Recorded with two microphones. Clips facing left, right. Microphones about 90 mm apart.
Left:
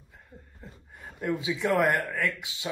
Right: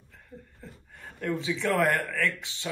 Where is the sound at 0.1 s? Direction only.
15° left (ahead or behind).